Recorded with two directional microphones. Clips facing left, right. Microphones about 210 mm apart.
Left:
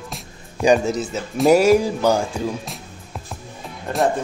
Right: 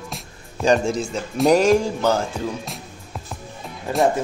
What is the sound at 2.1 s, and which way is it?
Music, 15° left (ahead or behind).